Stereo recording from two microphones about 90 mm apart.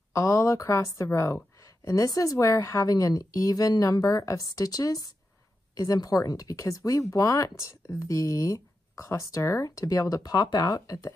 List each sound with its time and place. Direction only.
0.1 s a woman's voice: 35° left (ahead or behind)